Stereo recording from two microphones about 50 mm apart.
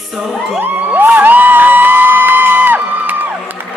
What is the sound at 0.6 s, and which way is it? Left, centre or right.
Music, right.